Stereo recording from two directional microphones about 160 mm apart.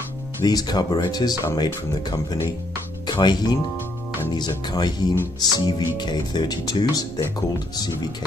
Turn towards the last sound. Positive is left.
turn(degrees=25)  # may be behind; listen again after turning